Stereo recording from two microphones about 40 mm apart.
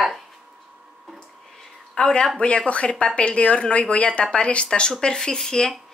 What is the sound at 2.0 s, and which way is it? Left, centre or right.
A woman's voice, left.